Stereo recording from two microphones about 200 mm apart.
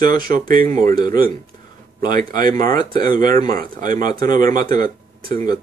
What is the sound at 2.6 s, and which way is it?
Speech, 45° right (ahead or behind).